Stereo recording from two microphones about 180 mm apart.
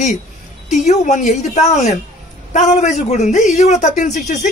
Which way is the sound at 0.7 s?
40° left (ahead or behind).